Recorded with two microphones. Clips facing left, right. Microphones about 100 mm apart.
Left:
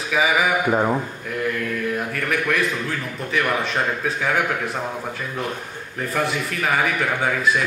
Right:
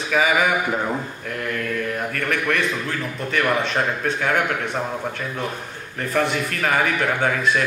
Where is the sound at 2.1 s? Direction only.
Centre (ahead or behind).